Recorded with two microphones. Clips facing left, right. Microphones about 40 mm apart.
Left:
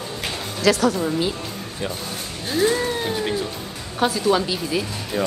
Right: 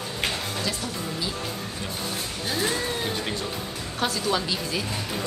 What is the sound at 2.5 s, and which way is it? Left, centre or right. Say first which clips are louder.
Speech: left 7 dB; centre.